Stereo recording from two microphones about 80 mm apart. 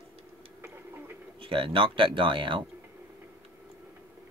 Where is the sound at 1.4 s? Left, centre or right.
Right.